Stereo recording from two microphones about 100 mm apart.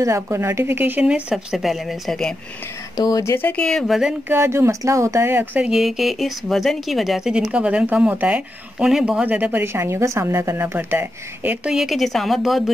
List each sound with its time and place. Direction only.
0.0 s a woman's voice: 30° right (ahead or behind)
1.3 s speech: 5° right (ahead or behind)
3.0 s speech: 40° left (ahead or behind)
3.3 s speech: 20° left (ahead or behind)
3.6 s speech: 5° left (ahead or behind)
4.3 s a woman's voice: 25° right (ahead or behind)
5.6 s speech: 5° right (ahead or behind)
9.2 s a woman's voice: 15° right (ahead or behind); by 12.7 s centre (ahead or behind)